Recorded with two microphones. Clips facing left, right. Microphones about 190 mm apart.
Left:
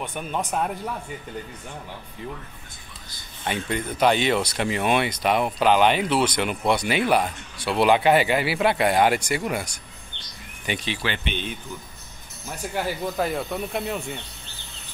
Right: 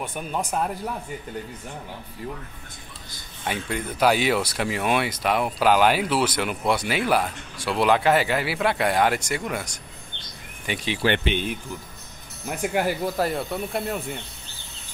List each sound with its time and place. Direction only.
0.0 s speech: centre (ahead or behind)
3.4 s speech: 5° right (ahead or behind)
11.0 s speech: 40° right (ahead or behind)
12.4 s speech: 15° right (ahead or behind)
13.2 s speech: centre (ahead or behind)